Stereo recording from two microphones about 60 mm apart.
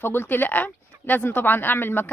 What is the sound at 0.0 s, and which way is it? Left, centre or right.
A woman's voice, left.